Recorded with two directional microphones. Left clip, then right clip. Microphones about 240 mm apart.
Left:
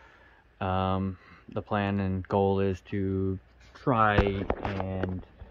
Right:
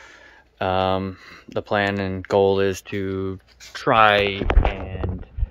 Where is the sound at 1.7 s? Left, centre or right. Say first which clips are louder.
Right 9 dB; centre.